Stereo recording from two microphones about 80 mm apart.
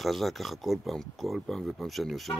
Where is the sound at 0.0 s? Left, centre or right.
Centre.